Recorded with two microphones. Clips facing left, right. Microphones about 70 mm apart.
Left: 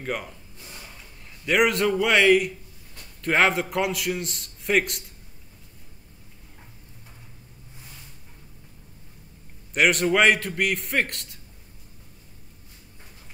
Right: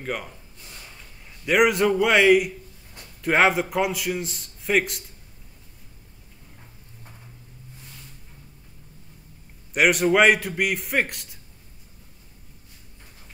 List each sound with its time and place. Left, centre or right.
0.0 s a man's voice: centre
9.8 s a man's voice: centre